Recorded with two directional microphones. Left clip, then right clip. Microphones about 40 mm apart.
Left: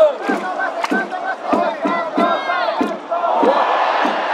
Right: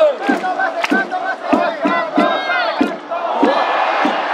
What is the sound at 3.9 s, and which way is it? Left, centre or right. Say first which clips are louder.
Crowd: right 1 dB; right.